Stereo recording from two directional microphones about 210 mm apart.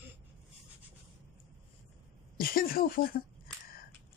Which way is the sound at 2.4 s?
45° left (ahead or behind).